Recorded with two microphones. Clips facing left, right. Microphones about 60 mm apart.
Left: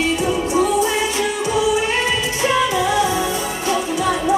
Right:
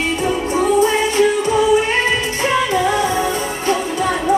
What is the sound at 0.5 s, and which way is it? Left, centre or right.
Music, right.